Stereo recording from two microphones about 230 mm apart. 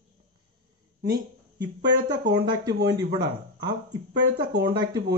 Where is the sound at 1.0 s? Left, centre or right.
Centre.